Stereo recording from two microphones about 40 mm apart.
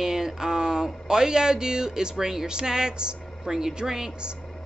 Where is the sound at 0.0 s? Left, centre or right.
Centre.